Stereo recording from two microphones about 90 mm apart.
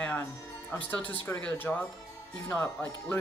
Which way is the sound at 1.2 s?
20° left (ahead or behind).